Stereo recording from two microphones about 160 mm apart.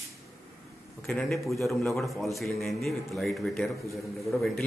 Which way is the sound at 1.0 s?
Centre (ahead or behind).